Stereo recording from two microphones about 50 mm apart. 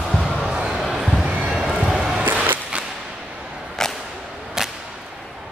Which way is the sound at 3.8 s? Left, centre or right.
Centre.